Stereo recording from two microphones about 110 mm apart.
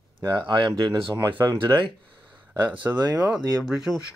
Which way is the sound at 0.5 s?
45° right (ahead or behind).